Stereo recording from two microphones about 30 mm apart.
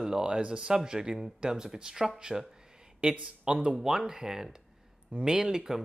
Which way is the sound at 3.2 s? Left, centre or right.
Right.